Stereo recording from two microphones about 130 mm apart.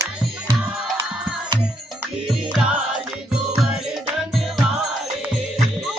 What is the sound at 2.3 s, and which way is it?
Music, 10° right (ahead or behind).